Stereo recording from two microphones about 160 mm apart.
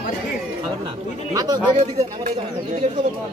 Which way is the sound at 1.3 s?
25° right (ahead or behind).